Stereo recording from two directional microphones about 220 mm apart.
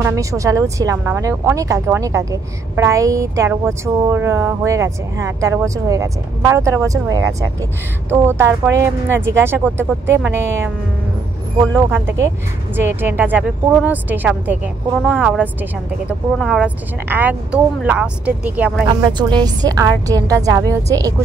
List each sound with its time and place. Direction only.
0.0 s speech: 15° right (ahead or behind)
11.9 s speech: 10° right (ahead or behind)
18.9 s speech: 20° right (ahead or behind)